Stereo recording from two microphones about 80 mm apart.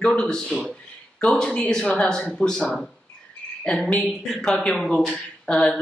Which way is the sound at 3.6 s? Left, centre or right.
Centre.